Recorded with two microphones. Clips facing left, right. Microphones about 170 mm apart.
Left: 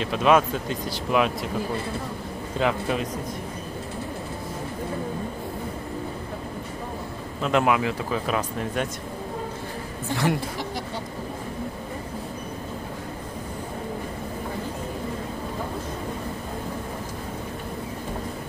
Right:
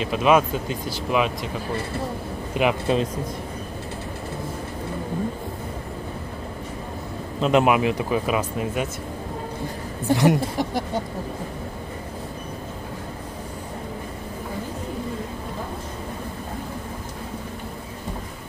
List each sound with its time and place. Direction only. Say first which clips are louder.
0.0 s speech: right 1 dB; 5° right (ahead or behind)
2.5 s speech: right 3 dB; 15° right (ahead or behind)
7.4 s speech: right 3 dB; 20° right (ahead or behind)
10.1 s speech: right 6 dB; 20° right (ahead or behind)